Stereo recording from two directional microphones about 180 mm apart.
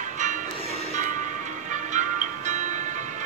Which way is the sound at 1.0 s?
45° right (ahead or behind).